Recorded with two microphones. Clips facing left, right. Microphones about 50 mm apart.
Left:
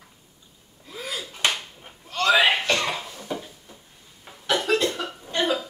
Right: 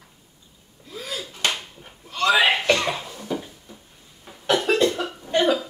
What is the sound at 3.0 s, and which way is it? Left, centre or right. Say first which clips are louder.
Cough: right 3 dB; centre.